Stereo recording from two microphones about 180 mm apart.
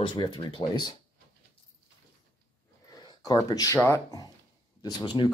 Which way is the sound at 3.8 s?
15° left (ahead or behind).